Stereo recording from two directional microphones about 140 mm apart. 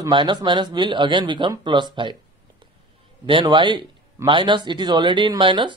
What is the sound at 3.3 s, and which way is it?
Speech, 35° right (ahead or behind).